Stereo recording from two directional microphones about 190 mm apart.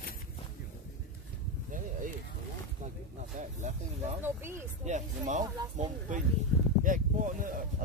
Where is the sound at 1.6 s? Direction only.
45° right (ahead or behind).